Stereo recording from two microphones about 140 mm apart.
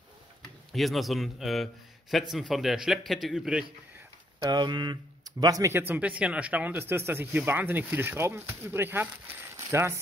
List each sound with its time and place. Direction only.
0.7 s a man's voice: centre (ahead or behind)
4.5 s speech: 30° right (ahead or behind)